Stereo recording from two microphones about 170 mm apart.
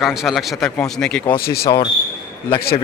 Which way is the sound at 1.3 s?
65° left (ahead or behind).